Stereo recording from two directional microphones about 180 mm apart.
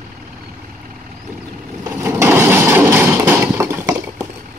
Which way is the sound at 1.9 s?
15° right (ahead or behind).